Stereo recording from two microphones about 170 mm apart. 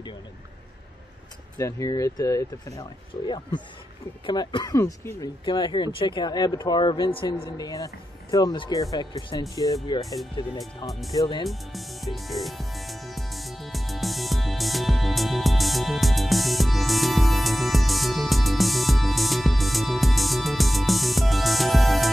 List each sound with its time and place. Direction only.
1.6 s speech: 20° left (ahead or behind)
4.3 s speech: 25° left (ahead or behind)
10.9 s speech: centre (ahead or behind)
11.1 s speech: 25° left (ahead or behind)
11.4 s music: centre (ahead or behind)